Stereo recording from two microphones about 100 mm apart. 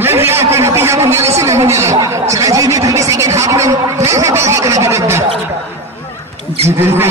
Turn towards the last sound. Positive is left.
turn(degrees=-25)  # may be behind; listen again after turning